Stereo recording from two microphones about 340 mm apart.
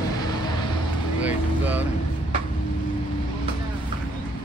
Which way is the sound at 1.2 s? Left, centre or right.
Centre.